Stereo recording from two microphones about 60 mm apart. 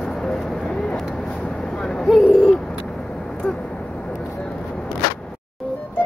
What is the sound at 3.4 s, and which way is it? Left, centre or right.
Vehicle, centre.